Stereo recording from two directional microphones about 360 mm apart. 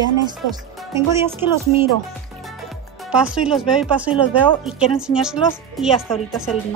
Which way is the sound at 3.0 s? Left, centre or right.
Centre.